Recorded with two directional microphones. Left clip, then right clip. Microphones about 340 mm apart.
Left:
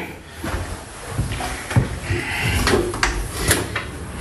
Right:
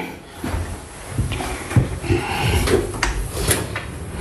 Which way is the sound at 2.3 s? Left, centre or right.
Centre.